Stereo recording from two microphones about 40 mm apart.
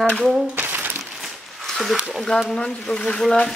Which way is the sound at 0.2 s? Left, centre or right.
Centre.